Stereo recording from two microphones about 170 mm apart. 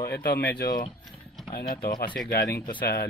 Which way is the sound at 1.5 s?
65° left (ahead or behind).